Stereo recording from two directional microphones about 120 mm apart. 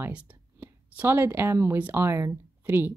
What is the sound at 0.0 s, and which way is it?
Speech, 10° right (ahead or behind).